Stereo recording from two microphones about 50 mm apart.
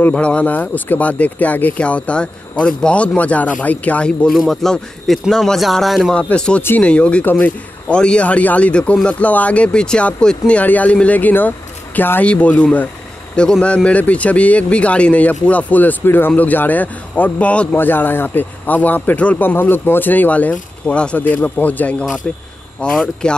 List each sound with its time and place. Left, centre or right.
0.1 s speech: left
4.3 s speech: centre
6.1 s speech: left
10.4 s speech: left
12.3 s speech: left
16.0 s speech: left
16.3 s speech: left
17.7 s speech: left
19.4 s speech: left
21.2 s speech: left
22.2 s speech: left